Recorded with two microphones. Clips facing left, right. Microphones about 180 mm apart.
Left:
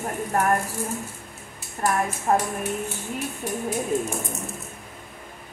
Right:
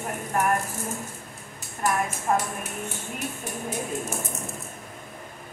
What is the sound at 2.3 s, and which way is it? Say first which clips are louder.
Speech: left 3 dB; 40° left (ahead or behind).